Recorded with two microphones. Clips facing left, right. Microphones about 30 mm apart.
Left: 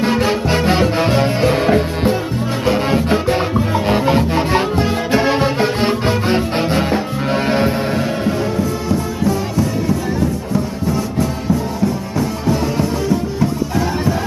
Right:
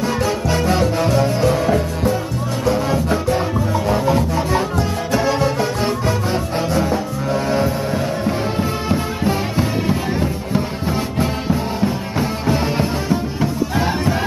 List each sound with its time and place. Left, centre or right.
0.0 s music: left
8.5 s music: right